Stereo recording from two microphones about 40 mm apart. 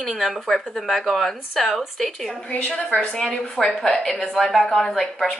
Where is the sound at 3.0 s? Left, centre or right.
Centre.